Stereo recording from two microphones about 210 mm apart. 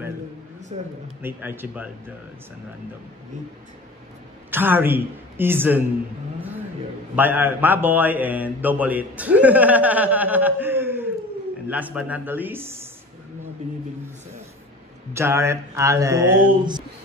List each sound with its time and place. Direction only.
0.7 s speech: 30° right (ahead or behind)
1.2 s speech: 10° right (ahead or behind)
4.5 s speech: 10° right (ahead or behind)
7.2 s speech: 10° right (ahead or behind)
15.1 s speech: 10° right (ahead or behind)